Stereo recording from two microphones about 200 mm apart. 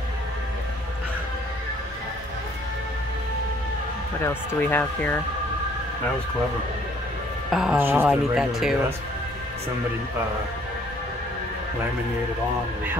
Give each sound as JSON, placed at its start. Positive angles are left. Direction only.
{"t": 4.3, "sound": "speech", "side_deg": 10}
{"t": 7.5, "sound": "speech", "side_deg": -5}